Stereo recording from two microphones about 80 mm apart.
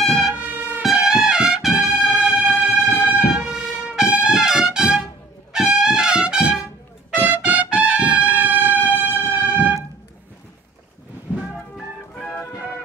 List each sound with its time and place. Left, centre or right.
0.0 s music: centre
0.3 s music: right
1.0 s music: centre
7.2 s trumpet: right
8.9 s music: right